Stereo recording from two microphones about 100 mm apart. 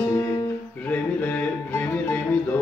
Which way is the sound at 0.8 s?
15° left (ahead or behind).